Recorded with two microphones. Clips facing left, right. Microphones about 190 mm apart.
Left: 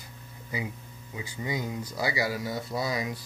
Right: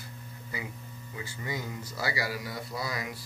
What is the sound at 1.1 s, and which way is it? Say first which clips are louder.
Speech: left 4 dB; 15° left (ahead or behind).